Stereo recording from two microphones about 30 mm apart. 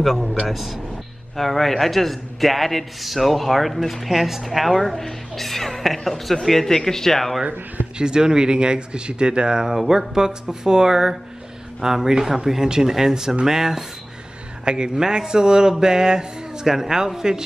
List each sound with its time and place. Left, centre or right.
0.0 s speech: centre
0.5 s a man's voice: centre
4.1 s a man's voice: centre
6.6 s speech: centre
8.0 s speech: right
14.6 s speech: right